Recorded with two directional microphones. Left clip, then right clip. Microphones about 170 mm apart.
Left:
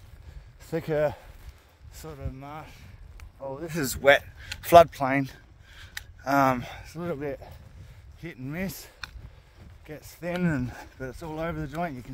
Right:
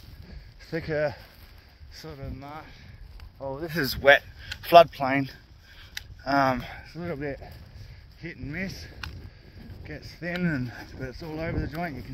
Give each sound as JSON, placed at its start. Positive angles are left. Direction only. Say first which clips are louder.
{"t": 0.6, "sound": "speech", "louder": "left 2 dB", "side_deg": 30}
{"t": 2.0, "sound": "speech", "louder": "even", "side_deg": 0}
{"t": 4.0, "sound": "speech", "louder": "right 1 dB", "side_deg": 15}